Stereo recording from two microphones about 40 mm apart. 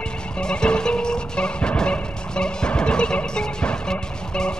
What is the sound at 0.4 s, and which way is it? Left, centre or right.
Music, left.